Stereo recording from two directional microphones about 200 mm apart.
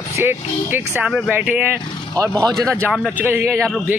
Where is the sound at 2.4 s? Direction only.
15° right (ahead or behind).